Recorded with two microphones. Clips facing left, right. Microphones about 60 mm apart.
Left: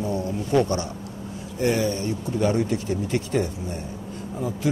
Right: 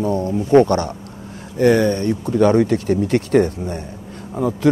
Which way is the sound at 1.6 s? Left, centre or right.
Right.